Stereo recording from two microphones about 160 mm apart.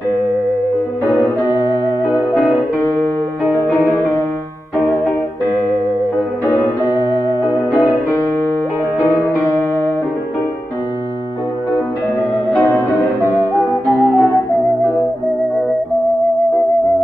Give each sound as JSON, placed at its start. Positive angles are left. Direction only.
{"t": 13.5, "sound": "music", "side_deg": 20}